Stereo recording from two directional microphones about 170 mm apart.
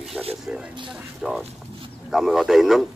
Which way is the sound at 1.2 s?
Centre (ahead or behind).